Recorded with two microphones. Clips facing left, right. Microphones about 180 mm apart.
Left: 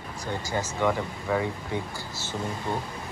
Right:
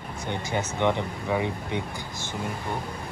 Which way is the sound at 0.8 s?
20° right (ahead or behind).